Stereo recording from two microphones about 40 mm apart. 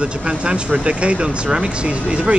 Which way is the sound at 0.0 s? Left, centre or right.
Right.